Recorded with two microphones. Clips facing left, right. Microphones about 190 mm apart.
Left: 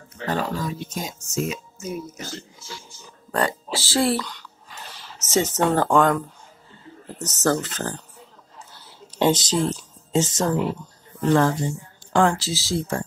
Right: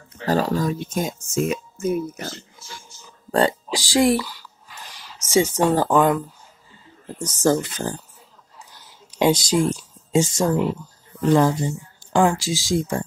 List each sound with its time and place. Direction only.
0.3 s speech: 40° right (ahead or behind); by 2.8 s 55° right (ahead or behind)
3.3 s speech: 30° right (ahead or behind)
3.7 s speech: 15° right (ahead or behind)
8.7 s a sound: 15° right (ahead or behind)
11.2 s speech: 10° right (ahead or behind)